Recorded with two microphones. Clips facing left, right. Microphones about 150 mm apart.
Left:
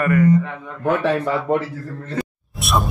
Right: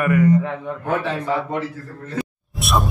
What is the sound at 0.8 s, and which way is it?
Speech, 60° left (ahead or behind).